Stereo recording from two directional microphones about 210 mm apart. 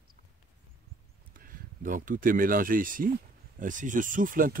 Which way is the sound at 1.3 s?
40° right (ahead or behind).